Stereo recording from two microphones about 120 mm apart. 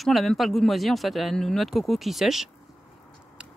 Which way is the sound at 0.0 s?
Centre (ahead or behind).